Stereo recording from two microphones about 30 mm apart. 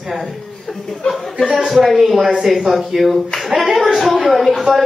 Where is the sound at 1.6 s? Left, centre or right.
Centre.